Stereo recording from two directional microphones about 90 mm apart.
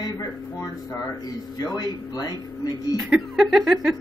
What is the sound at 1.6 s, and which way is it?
Speech, 50° left (ahead or behind).